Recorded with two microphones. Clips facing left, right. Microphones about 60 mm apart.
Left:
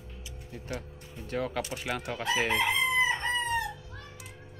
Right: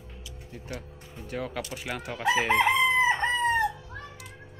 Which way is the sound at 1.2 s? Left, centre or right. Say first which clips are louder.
Left 1 dB; centre.